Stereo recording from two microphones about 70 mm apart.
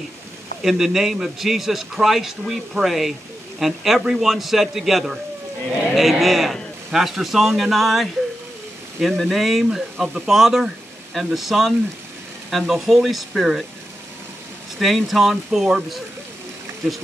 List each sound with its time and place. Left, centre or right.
0.6 s a man's voice: centre
14.8 s a man's voice: centre